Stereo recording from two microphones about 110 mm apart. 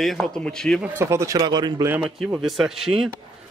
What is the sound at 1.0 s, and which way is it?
Speech, 25° right (ahead or behind).